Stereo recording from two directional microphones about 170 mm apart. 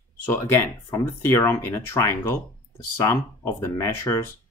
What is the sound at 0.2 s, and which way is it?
Speech, 15° left (ahead or behind).